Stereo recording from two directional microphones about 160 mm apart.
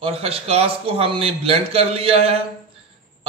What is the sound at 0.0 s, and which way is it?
A man's voice, 35° right (ahead or behind).